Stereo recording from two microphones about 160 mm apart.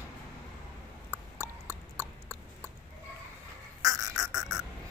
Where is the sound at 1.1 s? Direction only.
15° right (ahead or behind).